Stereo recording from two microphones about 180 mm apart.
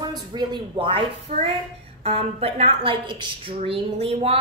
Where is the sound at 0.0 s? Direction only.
20° right (ahead or behind).